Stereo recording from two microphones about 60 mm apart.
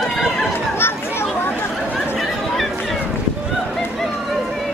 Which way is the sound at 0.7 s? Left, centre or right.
Left.